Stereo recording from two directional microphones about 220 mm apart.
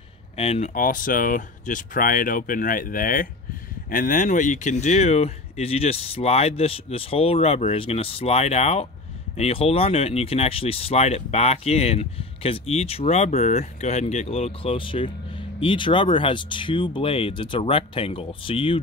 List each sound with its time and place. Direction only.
0.4 s speech: 30° left (ahead or behind)